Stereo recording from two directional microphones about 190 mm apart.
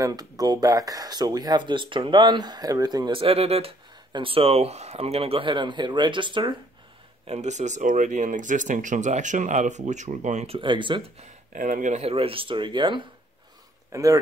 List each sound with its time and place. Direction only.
0.0 s speech: 20° right (ahead or behind)
7.2 s speech: 35° right (ahead or behind); by 14.1 s 15° right (ahead or behind)